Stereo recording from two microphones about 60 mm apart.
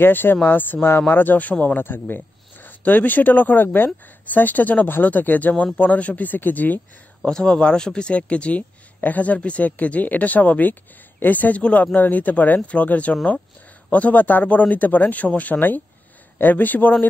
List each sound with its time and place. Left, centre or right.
0.0 s speech: left
7.2 s speech: centre; by 16.9 s left